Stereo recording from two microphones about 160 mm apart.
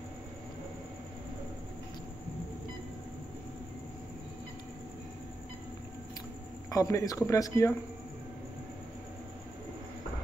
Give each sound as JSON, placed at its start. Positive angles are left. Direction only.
{"t": 6.7, "sound": "a man's voice", "side_deg": 20}